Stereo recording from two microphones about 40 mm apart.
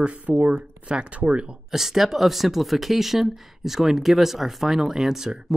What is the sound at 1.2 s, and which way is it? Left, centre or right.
Speech, right.